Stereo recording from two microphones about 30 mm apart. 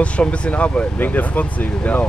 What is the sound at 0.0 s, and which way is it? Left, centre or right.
Speech, left.